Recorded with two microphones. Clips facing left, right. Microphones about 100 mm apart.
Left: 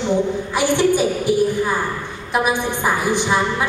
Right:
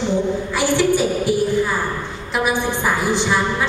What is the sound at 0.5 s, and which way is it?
A woman's voice, 15° left (ahead or behind).